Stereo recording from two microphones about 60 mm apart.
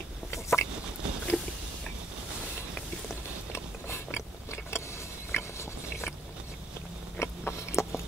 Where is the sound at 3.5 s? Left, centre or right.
Left.